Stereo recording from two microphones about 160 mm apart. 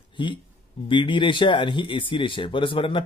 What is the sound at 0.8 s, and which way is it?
Speech, 30° left (ahead or behind).